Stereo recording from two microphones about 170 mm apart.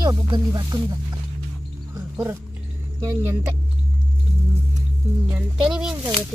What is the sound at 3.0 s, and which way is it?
Speech, 15° right (ahead or behind).